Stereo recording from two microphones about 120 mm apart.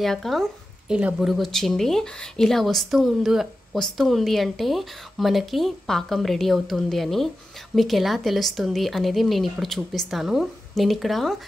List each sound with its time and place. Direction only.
0.0 s speech: centre (ahead or behind)